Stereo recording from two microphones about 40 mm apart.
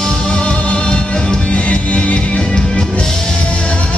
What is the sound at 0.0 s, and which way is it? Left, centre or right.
Music, left.